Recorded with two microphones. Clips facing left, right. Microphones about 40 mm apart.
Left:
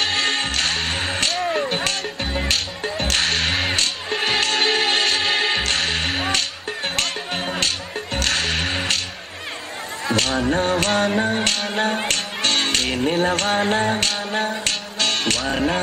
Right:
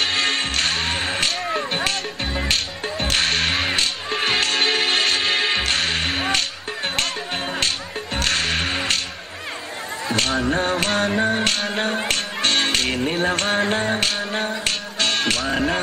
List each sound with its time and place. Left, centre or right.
0.0 s music: centre
3.3 s whip: centre
3.5 s music: centre
7.6 s music: centre
10.1 s finger snapping: centre
11.1 s music: centre
12.1 s music: centre
14.6 s finger snapping: centre